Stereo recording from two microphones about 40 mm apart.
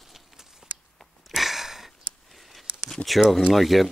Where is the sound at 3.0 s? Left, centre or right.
Centre.